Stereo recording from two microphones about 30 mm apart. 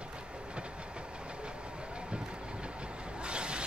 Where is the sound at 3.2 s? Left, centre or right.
Right.